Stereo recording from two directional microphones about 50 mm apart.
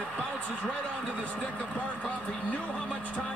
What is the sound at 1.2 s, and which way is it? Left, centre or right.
Speech, left.